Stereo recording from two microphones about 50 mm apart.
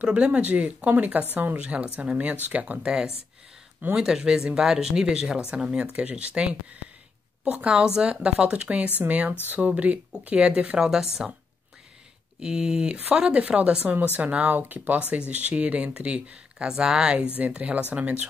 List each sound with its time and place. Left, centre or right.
0.0 s speech: right
1.6 s speech: right
2.8 s speech: centre
10.8 s speech: centre
12.4 s speech: centre